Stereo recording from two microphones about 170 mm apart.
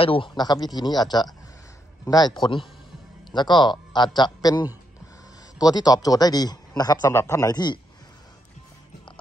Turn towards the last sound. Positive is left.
turn(degrees=25)  # may be behind; listen again after turning